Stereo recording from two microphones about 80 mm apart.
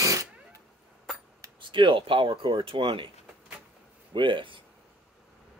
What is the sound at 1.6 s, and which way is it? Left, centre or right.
Speech, right.